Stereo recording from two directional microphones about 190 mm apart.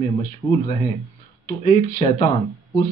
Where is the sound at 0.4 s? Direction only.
25° left (ahead or behind).